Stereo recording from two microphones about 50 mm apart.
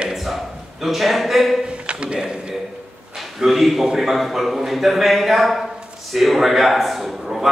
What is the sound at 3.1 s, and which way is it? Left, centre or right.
A man's voice, centre.